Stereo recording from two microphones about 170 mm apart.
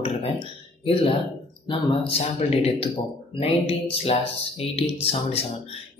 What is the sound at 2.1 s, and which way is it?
Speech, 35° left (ahead or behind).